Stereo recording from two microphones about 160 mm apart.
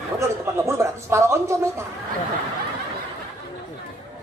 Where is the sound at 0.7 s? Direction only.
20° right (ahead or behind).